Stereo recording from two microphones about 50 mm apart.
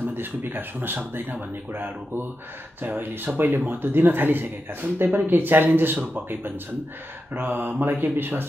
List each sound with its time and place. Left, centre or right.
0.1 s speech: right
4.9 s mantra: right